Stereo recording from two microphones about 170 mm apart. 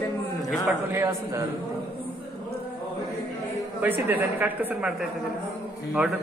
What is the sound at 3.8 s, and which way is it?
Speech, 10° right (ahead or behind).